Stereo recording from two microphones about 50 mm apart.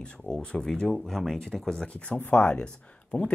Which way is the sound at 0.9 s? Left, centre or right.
Centre.